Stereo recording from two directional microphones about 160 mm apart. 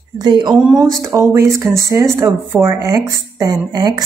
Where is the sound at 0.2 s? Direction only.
30° right (ahead or behind).